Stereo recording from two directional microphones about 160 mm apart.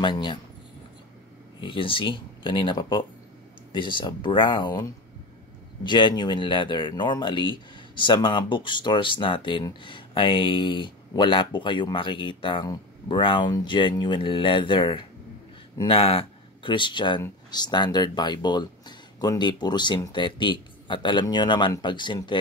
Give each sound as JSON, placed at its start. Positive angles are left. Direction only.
{"t": 0.0, "sound": "speech", "side_deg": 30}
{"t": 1.6, "sound": "speech", "side_deg": 30}